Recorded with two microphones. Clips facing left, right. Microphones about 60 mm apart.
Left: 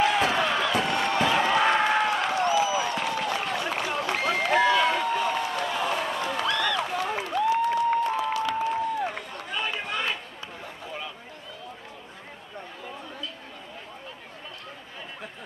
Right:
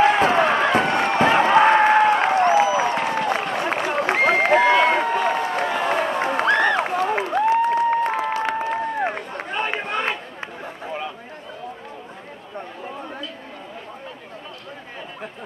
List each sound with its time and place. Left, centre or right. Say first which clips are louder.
0.0 s run: right 7 dB; right